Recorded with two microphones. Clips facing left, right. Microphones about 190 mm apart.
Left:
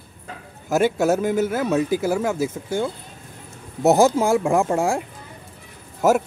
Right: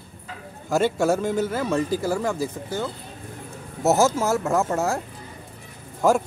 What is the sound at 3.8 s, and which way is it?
Speech, 15° left (ahead or behind).